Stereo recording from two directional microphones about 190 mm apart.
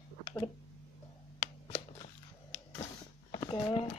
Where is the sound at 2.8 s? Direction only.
30° left (ahead or behind).